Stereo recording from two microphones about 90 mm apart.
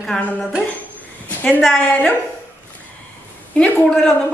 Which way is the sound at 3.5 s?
15° left (ahead or behind).